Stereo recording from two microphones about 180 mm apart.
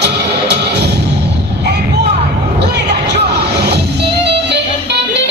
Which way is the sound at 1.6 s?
70° right (ahead or behind).